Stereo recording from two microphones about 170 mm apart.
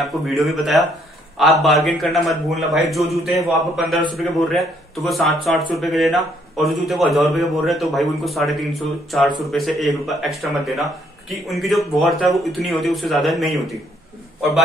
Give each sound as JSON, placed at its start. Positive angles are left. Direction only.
{"t": 0.0, "sound": "speech", "side_deg": 0}